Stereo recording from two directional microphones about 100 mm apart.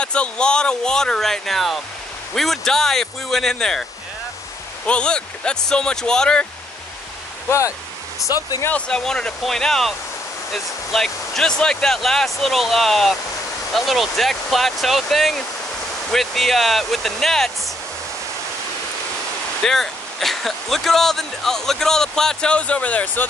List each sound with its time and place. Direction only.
0.0 s speech: 10° left (ahead or behind)
4.8 s speech: 10° left (ahead or behind)
7.4 s speech: 30° left (ahead or behind)
8.6 s speech: 10° left (ahead or behind)
19.6 s speech: 5° left (ahead or behind)